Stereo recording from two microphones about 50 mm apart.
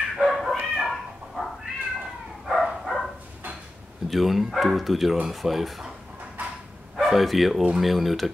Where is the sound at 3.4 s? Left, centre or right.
Right.